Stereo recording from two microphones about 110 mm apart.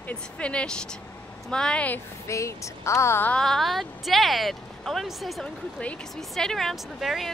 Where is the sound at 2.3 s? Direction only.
30° left (ahead or behind).